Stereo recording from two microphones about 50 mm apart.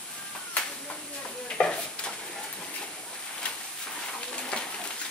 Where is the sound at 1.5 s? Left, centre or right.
Left.